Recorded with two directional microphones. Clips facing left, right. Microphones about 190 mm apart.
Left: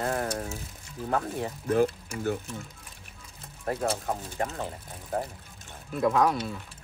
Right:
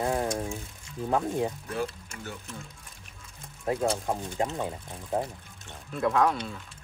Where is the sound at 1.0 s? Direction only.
15° right (ahead or behind).